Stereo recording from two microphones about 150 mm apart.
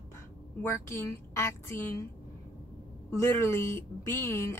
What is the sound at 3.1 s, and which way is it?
A woman's voice, 20° left (ahead or behind).